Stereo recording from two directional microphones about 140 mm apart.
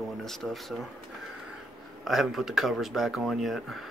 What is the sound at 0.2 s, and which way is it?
Speech, centre (ahead or behind).